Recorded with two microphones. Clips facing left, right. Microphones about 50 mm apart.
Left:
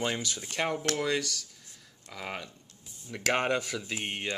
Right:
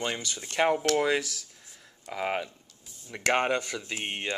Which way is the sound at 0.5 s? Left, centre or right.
Centre.